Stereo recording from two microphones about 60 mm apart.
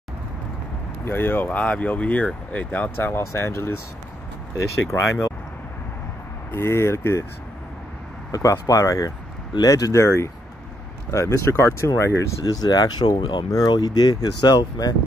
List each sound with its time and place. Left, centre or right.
1.0 s speech: left
3.1 s speech: left
4.9 s speech: left
6.5 s speech: left
8.3 s speech: left
9.6 s speech: left
10.0 s speech: left
12.4 s speech: left